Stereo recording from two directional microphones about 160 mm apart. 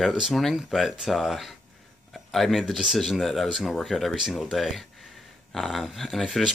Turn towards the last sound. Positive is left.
turn(degrees=0)  # may be behind; listen again after turning